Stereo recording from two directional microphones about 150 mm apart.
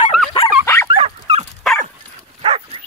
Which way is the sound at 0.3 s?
40° left (ahead or behind).